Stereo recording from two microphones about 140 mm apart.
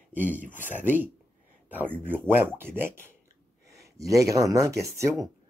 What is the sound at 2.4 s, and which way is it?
Speech, 15° right (ahead or behind).